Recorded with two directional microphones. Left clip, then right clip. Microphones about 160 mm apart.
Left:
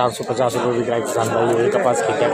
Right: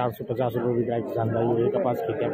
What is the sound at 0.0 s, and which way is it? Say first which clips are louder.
A man's voice: left 8 dB; 10° left (ahead or behind).